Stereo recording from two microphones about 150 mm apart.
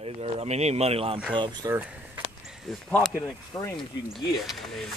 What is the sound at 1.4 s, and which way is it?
Speech, 30° right (ahead or behind).